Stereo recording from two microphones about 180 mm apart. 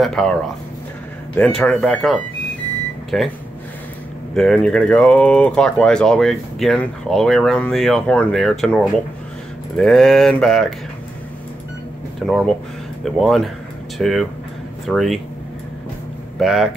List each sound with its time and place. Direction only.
0.0 s speech: 5° left (ahead or behind)
1.6 s speech: 5° left (ahead or behind)
4.4 s speech: 5° left (ahead or behind)
12.2 s speech: centre (ahead or behind)
16.3 s speech: centre (ahead or behind)